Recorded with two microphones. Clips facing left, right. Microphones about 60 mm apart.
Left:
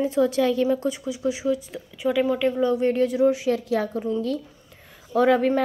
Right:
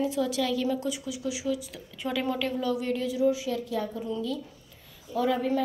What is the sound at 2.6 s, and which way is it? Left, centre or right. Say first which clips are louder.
A woman's voice: left 8 dB; left.